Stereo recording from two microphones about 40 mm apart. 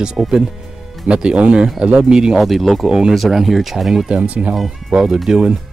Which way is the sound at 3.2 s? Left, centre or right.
Centre.